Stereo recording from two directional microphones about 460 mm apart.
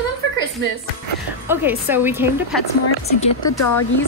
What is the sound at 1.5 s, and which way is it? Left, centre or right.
A woman's voice, centre.